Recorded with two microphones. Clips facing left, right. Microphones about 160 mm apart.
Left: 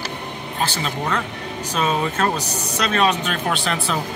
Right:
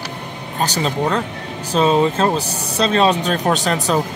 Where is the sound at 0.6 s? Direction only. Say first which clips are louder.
Right 5 dB; 35° right (ahead or behind).